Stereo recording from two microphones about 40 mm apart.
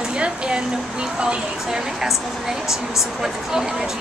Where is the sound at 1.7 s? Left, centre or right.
Centre.